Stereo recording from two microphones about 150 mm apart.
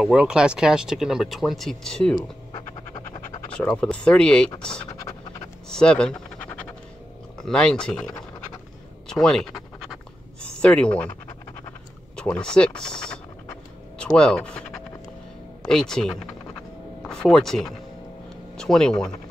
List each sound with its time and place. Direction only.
0.0 s speech: 5° right (ahead or behind)
2.1 s scratch: 30° left (ahead or behind)
3.7 s speech: 5° left (ahead or behind)
5.7 s scratch: 5° left (ahead or behind)
7.3 s speech: 5° left (ahead or behind)
9.1 s scratch: 5° left (ahead or behind)
10.4 s speech: 5° left (ahead or behind)
12.2 s speech: 5° left (ahead or behind)
15.6 s speech: 5° left (ahead or behind)